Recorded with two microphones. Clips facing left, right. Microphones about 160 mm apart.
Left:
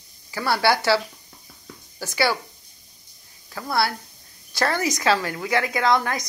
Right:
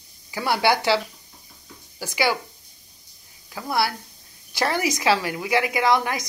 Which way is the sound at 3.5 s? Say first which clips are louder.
Even; 15° right (ahead or behind).